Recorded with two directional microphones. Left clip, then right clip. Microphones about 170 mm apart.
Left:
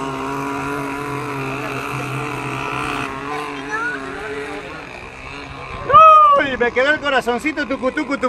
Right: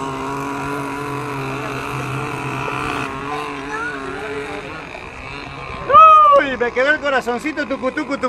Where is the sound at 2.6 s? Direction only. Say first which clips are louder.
Even; 30° left (ahead or behind).